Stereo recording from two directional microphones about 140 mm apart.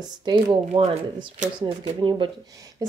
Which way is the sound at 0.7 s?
45° right (ahead or behind).